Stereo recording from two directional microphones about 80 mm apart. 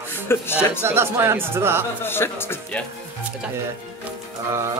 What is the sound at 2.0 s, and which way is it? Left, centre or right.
Speech, left.